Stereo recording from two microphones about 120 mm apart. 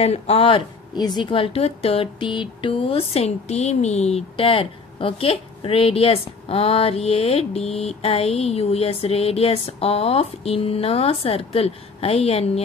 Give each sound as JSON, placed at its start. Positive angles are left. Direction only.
{"t": 0.0, "sound": "a woman's voice", "side_deg": 60}